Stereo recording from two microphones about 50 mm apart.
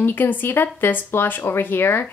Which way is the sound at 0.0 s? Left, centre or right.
Left.